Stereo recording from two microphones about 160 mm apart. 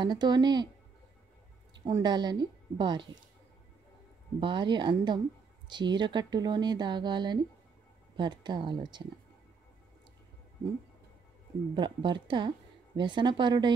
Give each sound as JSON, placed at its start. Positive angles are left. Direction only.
{"t": 0.0, "sound": "a woman's voice", "side_deg": -25}
{"t": 1.9, "sound": "a woman's voice", "side_deg": -25}
{"t": 4.4, "sound": "a woman's voice", "side_deg": -30}
{"t": 11.7, "sound": "a woman's voice", "side_deg": -30}